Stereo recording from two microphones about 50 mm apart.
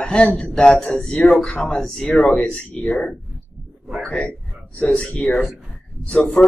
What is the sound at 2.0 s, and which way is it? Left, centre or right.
Speech, left.